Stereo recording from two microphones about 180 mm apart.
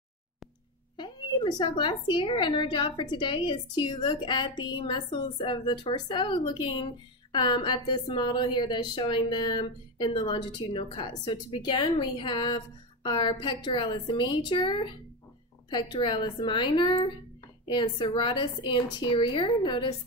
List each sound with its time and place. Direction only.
0.9 s a woman's voice: 25° left (ahead or behind)